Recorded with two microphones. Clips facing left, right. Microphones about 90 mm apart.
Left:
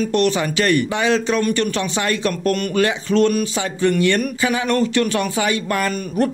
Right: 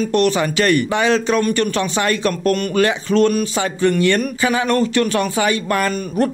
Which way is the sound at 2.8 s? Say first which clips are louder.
Right 1 dB; 50° right (ahead or behind).